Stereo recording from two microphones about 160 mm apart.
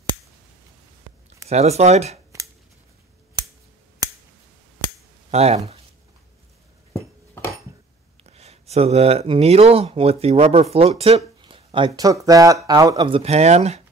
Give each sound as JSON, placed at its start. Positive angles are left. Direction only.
{"t": 1.5, "sound": "speech", "side_deg": -45}
{"t": 5.3, "sound": "speech", "side_deg": -40}
{"t": 8.2, "sound": "speech", "side_deg": -40}